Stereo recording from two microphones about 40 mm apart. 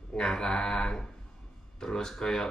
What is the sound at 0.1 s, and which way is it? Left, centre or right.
Speech, centre.